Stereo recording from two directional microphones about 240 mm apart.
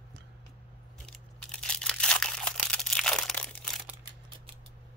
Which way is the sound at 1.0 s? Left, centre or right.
Centre.